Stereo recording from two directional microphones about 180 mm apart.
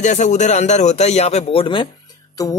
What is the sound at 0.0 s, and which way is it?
A man's voice, 40° left (ahead or behind).